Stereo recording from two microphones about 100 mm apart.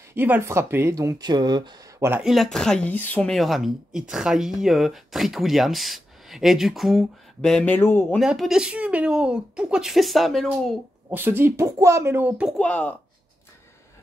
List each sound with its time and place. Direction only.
0.1 s speech: 20° right (ahead or behind); by 1.8 s 45° right (ahead or behind)
2.0 s speech: 25° right (ahead or behind)
2.2 s speech: centre (ahead or behind)
2.9 s speech: 15° left (ahead or behind)
3.3 s speech: centre (ahead or behind)
7.5 s speech: 15° left (ahead or behind)
8.2 s a woman's voice: 5° right (ahead or behind)
11.1 s speech: 20° right (ahead or behind)
12.5 s speech: 15° left (ahead or behind)